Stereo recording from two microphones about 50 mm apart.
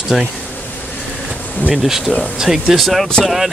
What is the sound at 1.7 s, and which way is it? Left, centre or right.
Speech, centre.